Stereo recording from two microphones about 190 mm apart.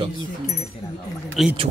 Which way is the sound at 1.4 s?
Centre (ahead or behind).